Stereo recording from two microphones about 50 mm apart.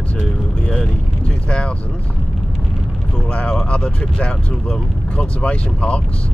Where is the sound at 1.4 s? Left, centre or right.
Left.